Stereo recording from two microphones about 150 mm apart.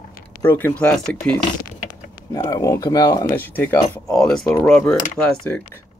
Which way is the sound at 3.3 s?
15° left (ahead or behind).